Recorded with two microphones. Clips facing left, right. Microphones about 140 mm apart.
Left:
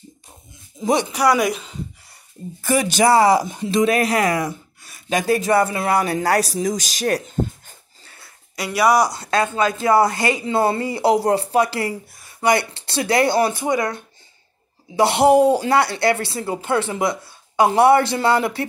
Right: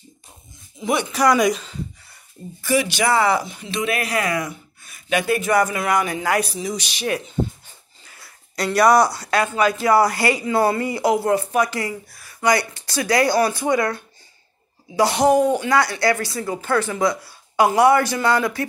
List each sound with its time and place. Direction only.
0.7 s a man's voice: 35° left (ahead or behind)
1.1 s speech: 10° left (ahead or behind)
2.6 s speech: 40° left (ahead or behind)
8.5 s speech: 5° left (ahead or behind)
9.1 s speech: 25° left (ahead or behind)